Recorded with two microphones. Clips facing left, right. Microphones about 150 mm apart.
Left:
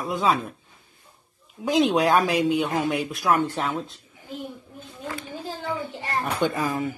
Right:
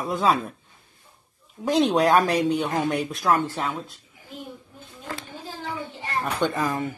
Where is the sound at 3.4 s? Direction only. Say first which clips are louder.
Left 2 dB; 20° left (ahead or behind).